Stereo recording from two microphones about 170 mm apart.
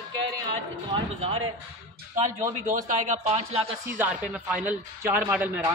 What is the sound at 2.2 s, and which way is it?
Speech, 50° right (ahead or behind).